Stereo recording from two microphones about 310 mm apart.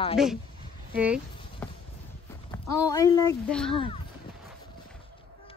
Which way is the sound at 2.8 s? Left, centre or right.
Centre.